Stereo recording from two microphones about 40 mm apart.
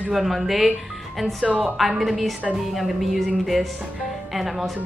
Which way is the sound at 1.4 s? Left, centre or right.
Right.